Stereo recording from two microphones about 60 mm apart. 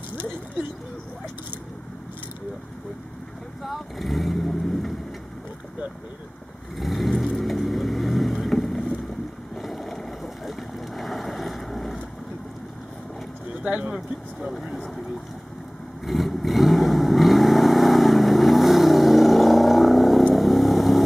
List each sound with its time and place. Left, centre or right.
3.6 s vehicle: centre
6.8 s vehicle: centre
9.6 s boat: centre
13.6 s speech: centre
14.4 s speech: centre
16.1 s vehicle: centre